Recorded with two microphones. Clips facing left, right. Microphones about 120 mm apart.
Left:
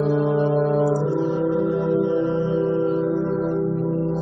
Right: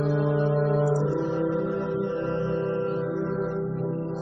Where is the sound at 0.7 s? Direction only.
Centre (ahead or behind).